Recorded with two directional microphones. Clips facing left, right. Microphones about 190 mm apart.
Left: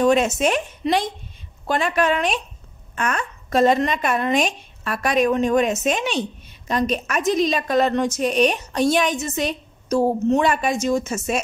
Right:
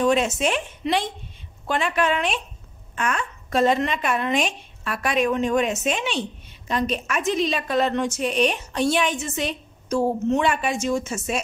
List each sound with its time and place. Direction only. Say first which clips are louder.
0.0 s a woman's voice: left 3 dB; 45° left (ahead or behind)